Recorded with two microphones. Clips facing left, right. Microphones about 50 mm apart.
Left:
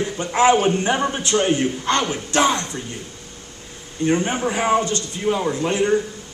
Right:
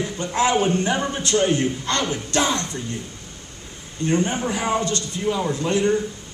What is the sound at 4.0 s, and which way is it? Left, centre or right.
A man's voice, left.